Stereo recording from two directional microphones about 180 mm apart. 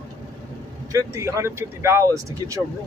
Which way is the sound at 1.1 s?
15° right (ahead or behind).